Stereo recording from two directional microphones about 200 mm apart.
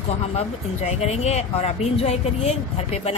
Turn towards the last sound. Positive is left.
turn(degrees=30)  # may be behind; listen again after turning